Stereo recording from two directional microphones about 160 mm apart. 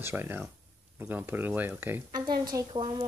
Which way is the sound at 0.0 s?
15° right (ahead or behind).